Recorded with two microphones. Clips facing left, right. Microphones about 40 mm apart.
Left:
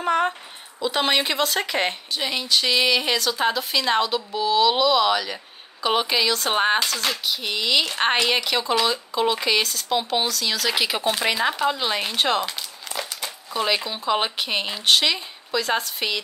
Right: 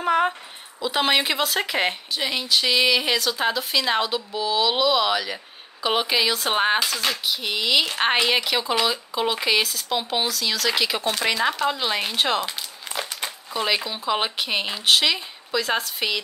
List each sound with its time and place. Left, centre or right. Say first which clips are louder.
0.0 s speech: right 1 dB; centre
12.9 s crumpling: right 1 dB; centre
13.5 s speech: left 1 dB; centre